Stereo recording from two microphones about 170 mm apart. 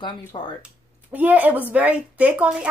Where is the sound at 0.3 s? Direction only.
30° left (ahead or behind).